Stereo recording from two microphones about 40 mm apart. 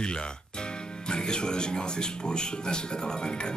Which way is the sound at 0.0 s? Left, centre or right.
Left.